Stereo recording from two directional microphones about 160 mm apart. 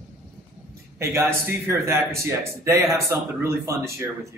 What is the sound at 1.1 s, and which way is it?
A man's voice, 15° right (ahead or behind).